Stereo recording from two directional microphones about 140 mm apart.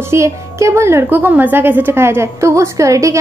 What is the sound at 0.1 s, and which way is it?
A woman's voice, 20° right (ahead or behind).